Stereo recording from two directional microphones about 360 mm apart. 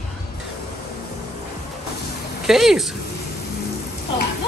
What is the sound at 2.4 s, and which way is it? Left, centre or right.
Speech, centre.